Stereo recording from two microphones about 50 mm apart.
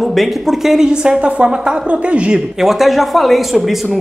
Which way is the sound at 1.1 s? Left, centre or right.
Right.